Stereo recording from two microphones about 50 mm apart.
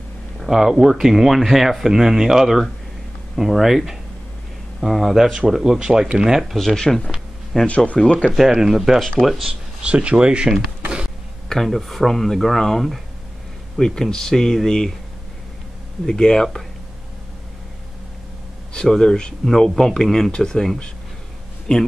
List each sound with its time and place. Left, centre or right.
0.5 s speech: centre
5.1 s speech: centre
6.6 s speech: centre
7.6 s speech: left
8.5 s speech: centre
9.5 s speech: centre
11.4 s speech: centre
16.1 s speech: centre
18.7 s speech: centre